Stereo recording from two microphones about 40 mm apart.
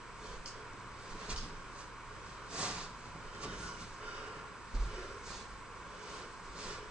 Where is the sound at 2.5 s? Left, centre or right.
Right.